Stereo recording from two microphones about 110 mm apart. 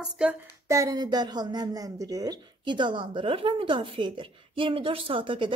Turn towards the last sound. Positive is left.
turn(degrees=-50)  # may be behind; listen again after turning